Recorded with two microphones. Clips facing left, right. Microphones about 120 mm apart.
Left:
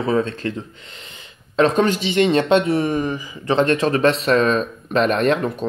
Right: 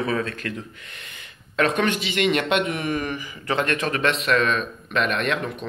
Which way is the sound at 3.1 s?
20° left (ahead or behind).